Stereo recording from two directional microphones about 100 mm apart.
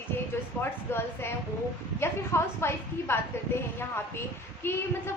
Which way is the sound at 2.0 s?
25° left (ahead or behind).